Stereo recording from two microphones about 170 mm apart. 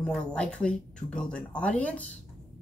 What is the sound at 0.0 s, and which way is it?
Speech, 5° left (ahead or behind).